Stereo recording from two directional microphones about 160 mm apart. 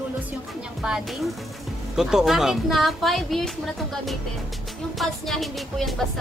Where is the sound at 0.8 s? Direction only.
5° right (ahead or behind).